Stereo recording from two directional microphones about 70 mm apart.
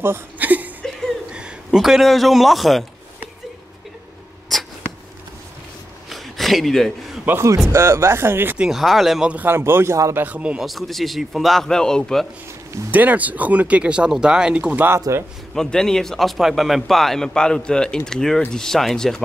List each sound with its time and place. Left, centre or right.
0.0 s speech: right
1.3 s a man's voice: centre
4.5 s cat: centre
6.0 s a sound: centre
7.4 s speech: right
8.5 s a man's voice: centre
9.5 s speech: right
10.1 s speech: right
10.6 s a man's voice: centre
12.9 s speech: right
15.1 s speech: right
15.5 s a man's voice: centre